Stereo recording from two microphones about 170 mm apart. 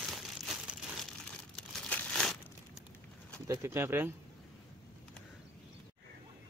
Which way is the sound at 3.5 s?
15° right (ahead or behind).